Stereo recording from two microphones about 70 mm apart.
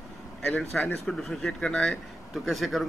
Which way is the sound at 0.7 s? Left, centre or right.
Centre.